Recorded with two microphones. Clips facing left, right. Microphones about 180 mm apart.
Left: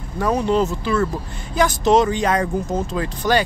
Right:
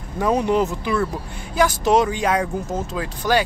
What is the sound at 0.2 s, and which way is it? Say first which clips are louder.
Speech: even; 15° right (ahead or behind).